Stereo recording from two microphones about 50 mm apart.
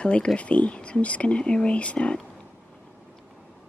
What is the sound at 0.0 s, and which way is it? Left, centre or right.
Speech, left.